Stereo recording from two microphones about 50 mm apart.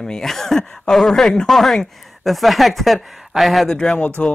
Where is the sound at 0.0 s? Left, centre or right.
Centre.